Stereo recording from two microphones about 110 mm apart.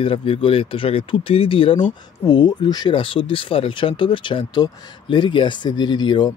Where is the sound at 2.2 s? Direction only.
40° left (ahead or behind).